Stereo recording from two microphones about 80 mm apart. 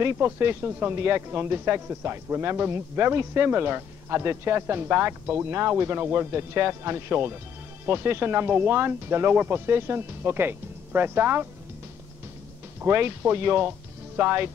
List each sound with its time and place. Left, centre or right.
0.0 s speech: right
12.8 s speech: right